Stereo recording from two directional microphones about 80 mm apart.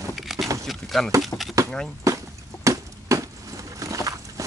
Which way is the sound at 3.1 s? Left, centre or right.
Right.